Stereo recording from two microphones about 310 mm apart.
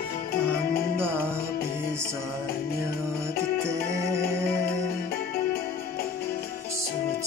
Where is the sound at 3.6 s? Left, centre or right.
Centre.